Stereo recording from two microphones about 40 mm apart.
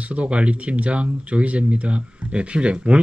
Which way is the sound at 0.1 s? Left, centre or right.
Right.